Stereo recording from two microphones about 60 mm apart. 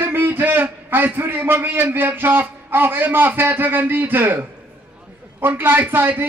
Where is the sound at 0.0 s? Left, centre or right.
Right.